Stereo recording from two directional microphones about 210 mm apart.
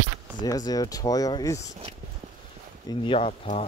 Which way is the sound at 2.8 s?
25° left (ahead or behind).